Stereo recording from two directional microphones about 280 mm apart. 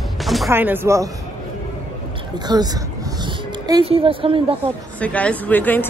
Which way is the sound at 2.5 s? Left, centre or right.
Centre.